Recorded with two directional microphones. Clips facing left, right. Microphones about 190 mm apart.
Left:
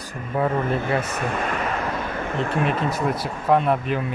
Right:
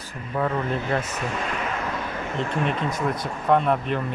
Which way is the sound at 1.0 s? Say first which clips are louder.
Left 3 dB; 55° left (ahead or behind).